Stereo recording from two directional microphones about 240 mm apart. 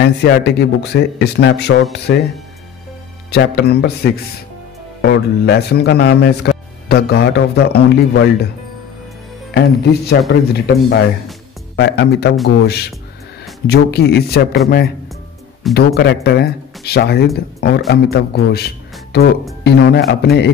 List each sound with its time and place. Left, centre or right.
0.0 s speech: left
3.3 s speech: left
9.5 s speech: left
15.7 s a man's voice: left